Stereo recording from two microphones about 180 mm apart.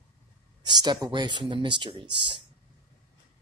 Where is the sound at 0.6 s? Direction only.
25° right (ahead or behind).